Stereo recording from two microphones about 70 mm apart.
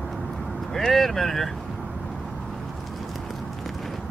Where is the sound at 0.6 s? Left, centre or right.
Centre.